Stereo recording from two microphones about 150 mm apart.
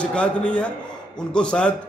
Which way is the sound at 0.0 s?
5° left (ahead or behind).